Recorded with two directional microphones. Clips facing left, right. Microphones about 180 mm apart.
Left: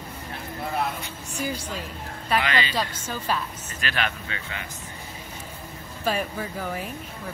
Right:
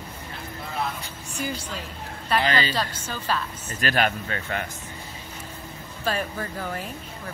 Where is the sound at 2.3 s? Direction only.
35° right (ahead or behind).